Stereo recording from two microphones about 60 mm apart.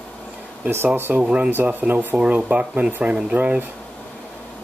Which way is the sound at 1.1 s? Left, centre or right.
Centre.